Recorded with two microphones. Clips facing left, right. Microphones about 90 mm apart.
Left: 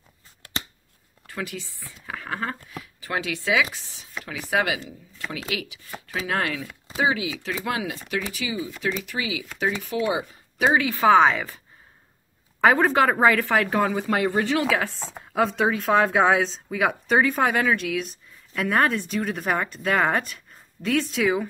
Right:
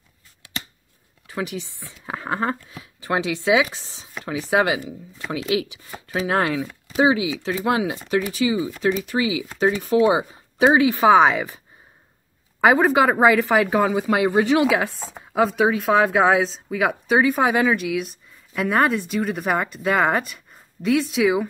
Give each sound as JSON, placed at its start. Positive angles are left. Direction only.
{"t": 1.2, "sound": "speech", "side_deg": -20}
{"t": 15.1, "sound": "speech", "side_deg": -5}